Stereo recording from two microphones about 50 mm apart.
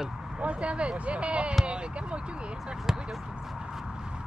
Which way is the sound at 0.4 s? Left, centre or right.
Right.